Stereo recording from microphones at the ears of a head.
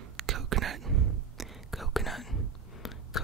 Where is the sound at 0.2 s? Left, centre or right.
Right.